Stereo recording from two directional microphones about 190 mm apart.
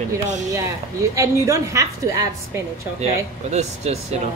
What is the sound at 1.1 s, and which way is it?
A woman's voice, 15° right (ahead or behind).